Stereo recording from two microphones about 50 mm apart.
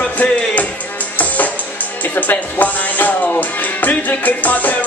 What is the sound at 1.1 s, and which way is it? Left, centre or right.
Music, left.